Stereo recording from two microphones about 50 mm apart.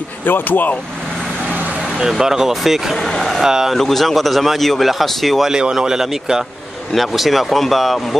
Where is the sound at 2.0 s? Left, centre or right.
Centre.